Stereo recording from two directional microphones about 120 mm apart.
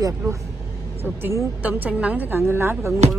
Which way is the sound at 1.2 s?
15° right (ahead or behind).